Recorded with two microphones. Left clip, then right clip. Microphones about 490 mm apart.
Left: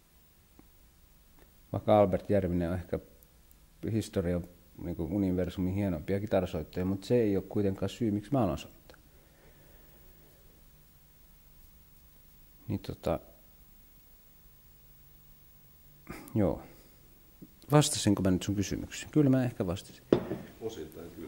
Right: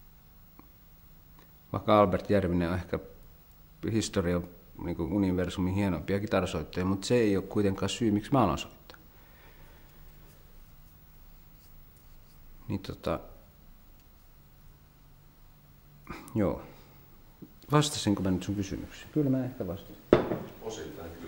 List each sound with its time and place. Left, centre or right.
1.7 s speech: left
12.6 s speech: left
16.1 s speech: left